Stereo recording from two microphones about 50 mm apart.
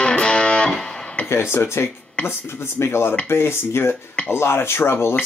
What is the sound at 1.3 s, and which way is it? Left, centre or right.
Speech, left.